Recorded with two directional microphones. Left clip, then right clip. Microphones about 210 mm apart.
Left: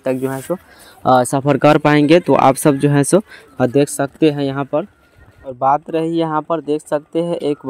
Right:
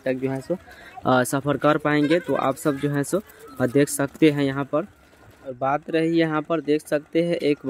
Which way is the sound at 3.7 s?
15° left (ahead or behind).